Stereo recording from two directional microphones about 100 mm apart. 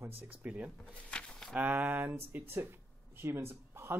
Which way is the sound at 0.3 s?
15° right (ahead or behind).